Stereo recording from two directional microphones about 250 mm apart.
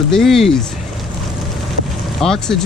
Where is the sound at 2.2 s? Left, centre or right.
Centre.